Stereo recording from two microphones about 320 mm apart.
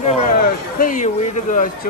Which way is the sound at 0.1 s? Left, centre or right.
Left.